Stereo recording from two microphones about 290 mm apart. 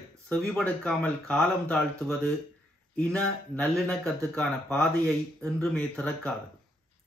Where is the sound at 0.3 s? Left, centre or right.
Centre.